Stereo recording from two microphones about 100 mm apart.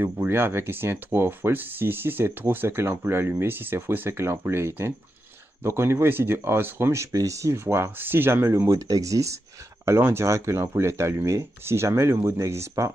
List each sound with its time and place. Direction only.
0.0 s speech: 25° right (ahead or behind)